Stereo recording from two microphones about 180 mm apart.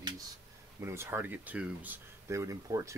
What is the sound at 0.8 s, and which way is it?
Speech, 15° right (ahead or behind).